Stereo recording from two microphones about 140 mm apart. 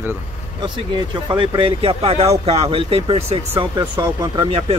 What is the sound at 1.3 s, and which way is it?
Speech, 35° right (ahead or behind).